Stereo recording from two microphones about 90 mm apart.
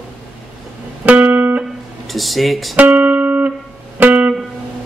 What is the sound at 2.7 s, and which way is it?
Music, 20° right (ahead or behind).